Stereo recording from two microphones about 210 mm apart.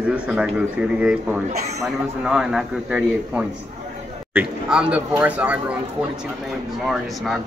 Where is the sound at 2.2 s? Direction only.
Centre (ahead or behind).